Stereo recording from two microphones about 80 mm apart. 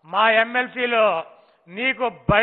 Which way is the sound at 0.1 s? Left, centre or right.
Centre.